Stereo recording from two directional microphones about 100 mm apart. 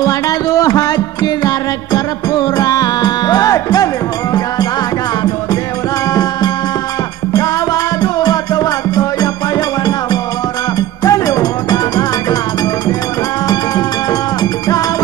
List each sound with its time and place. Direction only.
0.6 s music: 40° left (ahead or behind)
7.3 s music: 40° left (ahead or behind)
11.1 s music: 35° left (ahead or behind)